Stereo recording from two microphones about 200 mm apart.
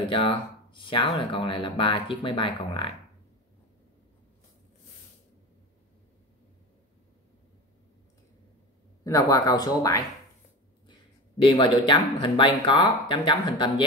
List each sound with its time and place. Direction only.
0.0 s speech: 25° left (ahead or behind)
9.0 s speech: 15° left (ahead or behind)
11.4 s speech: 25° left (ahead or behind)